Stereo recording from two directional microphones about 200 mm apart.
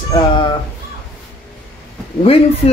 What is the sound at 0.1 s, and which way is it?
Speech, 25° left (ahead or behind).